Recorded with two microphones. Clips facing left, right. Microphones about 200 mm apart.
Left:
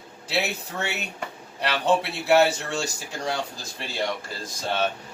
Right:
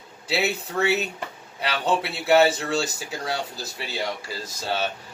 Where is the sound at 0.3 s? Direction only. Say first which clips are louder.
Right 3 dB; centre (ahead or behind).